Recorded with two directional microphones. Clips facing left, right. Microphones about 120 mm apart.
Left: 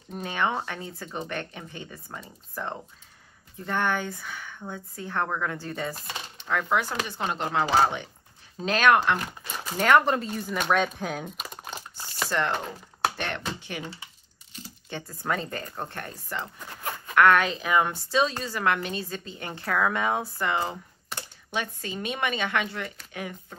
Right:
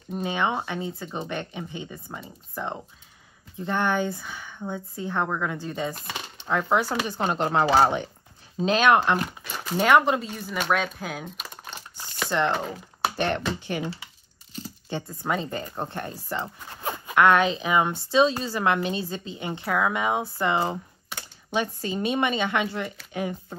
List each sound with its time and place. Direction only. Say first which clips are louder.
0.1 s speech: right 2 dB; 15° right (ahead or behind)
6.3 s speech: right 3 dB; 30° right (ahead or behind)
8.5 s speech: right 2 dB; 25° right (ahead or behind)
9.8 s speech: right 1 dB; 10° right (ahead or behind)
10.3 s crumpling: left 1 dB; 5° right (ahead or behind)
12.3 s speech: right 3 dB; 20° right (ahead or behind)
13.2 s speech: right 7 dB; 40° right (ahead or behind)
14.5 s a sound: right 5 dB; 30° right (ahead or behind)
15.2 s speech: right 1 dB; 15° right (ahead or behind)
20.3 s speech: right 3 dB; 25° right (ahead or behind)